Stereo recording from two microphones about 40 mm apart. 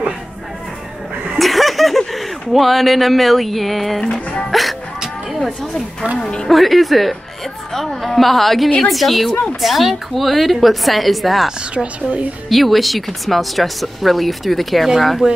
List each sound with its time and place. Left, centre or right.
1.4 s speech: centre
4.1 s speech: left
4.5 s music: centre
5.3 s speech: centre
9.3 s speech: left
9.6 s speech: centre
11.7 s a woman's voice: right
12.4 s speech: centre